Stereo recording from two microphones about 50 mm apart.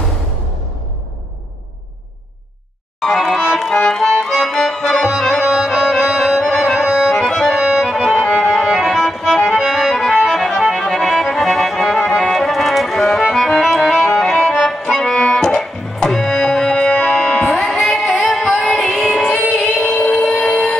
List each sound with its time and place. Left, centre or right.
3.0 s music: centre
3.5 s accordion: centre
5.6 s music: centre
7.2 s accordion: centre
7.5 s accordion: centre
8.2 s music: left
8.6 s music: centre
13.2 s accordion: centre
15.2 s music: centre
18.6 s music: left
18.9 s music: centre